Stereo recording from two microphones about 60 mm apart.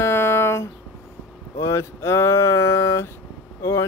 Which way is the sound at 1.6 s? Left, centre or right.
Left.